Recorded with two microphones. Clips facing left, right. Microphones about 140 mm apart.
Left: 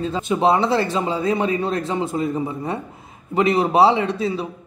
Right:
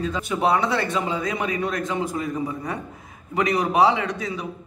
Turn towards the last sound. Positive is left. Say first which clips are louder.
# left 6 dB
turn(degrees=30)  # may be behind; listen again after turning